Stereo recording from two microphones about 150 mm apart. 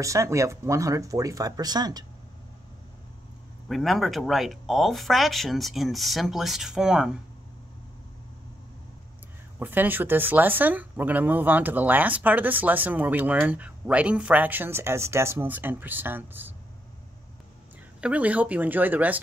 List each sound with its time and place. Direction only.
0.0 s speech: 20° right (ahead or behind)
3.6 s speech: centre (ahead or behind)
9.6 s speech: 15° right (ahead or behind)
18.0 s speech: 10° right (ahead or behind)